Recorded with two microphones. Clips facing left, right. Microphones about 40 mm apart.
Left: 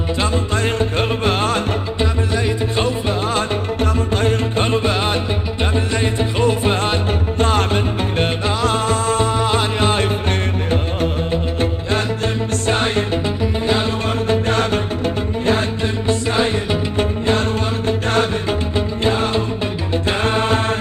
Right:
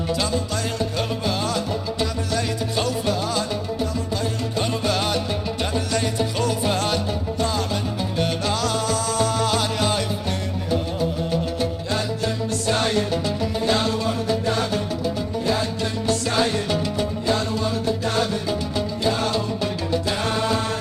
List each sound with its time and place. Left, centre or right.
0.2 s music: left
2.0 s music: left
12.6 s music: left
13.4 s music: left
14.3 s music: left
16.1 s music: left
18.8 s music: left